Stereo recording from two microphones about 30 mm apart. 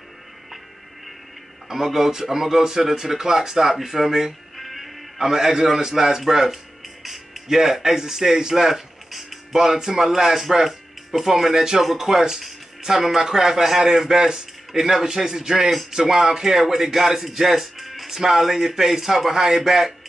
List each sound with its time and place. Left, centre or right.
1.7 s speech: centre
4.6 s music: centre
5.2 s speech: centre
6.5 s music: centre
9.5 s speech: centre
10.5 s music: centre
11.2 s speech: centre
14.7 s speech: centre